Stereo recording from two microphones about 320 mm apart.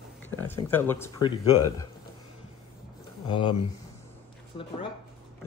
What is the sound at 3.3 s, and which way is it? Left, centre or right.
Speech, centre.